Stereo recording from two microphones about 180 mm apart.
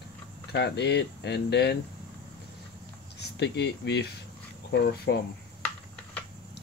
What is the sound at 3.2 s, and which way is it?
Speech, 70° left (ahead or behind).